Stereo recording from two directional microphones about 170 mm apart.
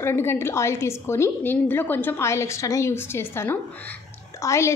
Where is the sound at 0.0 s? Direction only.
15° left (ahead or behind).